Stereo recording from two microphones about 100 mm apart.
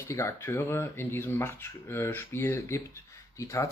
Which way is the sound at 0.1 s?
30° left (ahead or behind).